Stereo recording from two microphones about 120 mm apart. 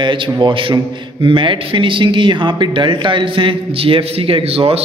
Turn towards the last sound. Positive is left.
turn(degrees=-55)  # may be behind; listen again after turning